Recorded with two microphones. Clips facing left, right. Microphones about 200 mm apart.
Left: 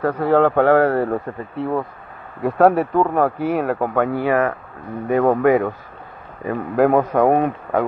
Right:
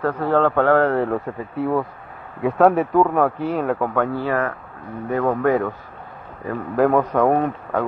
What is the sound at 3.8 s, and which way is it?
Speech, 15° left (ahead or behind).